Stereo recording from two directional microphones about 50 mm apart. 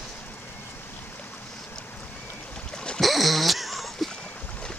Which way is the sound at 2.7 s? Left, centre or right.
Centre.